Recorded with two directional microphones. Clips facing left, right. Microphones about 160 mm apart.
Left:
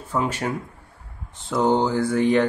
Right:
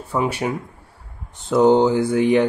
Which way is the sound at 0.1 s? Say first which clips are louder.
Right 3 dB; 10° right (ahead or behind).